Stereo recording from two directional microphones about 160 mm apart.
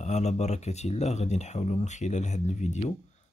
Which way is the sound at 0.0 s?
45° left (ahead or behind).